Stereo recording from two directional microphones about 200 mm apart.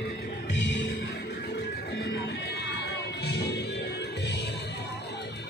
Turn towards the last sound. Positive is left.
turn(degrees=55)  # may be behind; listen again after turning